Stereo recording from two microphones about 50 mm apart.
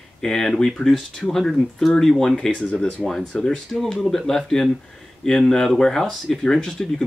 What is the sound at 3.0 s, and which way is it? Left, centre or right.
Speech, centre.